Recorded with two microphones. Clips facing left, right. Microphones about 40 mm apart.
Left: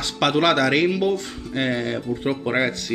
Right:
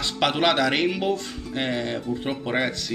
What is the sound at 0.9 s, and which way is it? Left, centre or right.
Speech, right.